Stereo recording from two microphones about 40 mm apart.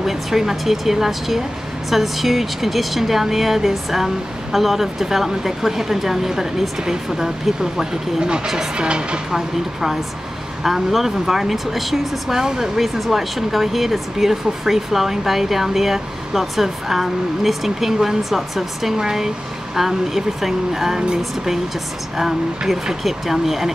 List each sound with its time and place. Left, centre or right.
0.0 s speech: centre
8.7 s speech: right
9.3 s speech: centre
22.1 s speech: centre